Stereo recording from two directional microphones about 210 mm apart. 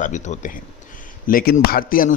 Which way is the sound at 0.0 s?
35° left (ahead or behind).